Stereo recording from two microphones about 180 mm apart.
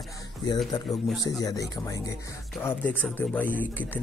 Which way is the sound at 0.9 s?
Centre (ahead or behind).